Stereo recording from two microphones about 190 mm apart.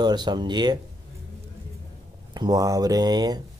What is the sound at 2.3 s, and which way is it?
Speech, 20° right (ahead or behind).